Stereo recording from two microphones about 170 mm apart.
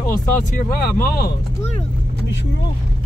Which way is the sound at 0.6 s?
60° left (ahead or behind).